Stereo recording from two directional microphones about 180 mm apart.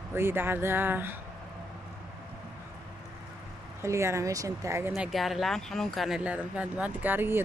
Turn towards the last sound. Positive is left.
turn(degrees=-10)  # may be behind; listen again after turning